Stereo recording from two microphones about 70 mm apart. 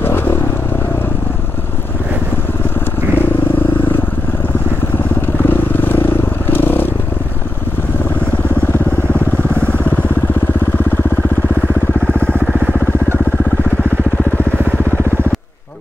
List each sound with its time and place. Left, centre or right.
0.0 s vehicle: left
3.2 s vehicle: left
5.4 s vehicle: left
12.1 s vehicle: centre
12.4 s vehicle: centre